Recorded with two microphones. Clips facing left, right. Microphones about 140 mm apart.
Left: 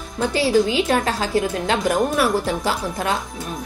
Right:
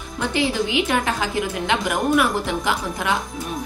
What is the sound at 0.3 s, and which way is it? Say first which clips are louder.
A woman's voice: left 4 dB; 35° left (ahead or behind).